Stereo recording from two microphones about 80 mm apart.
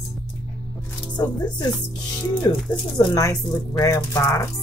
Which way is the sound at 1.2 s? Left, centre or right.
Left.